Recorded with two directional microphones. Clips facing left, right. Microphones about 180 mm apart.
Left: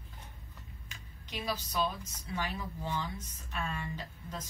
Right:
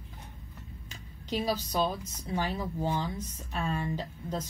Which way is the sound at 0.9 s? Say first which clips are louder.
Right 10 dB; 30° right (ahead or behind).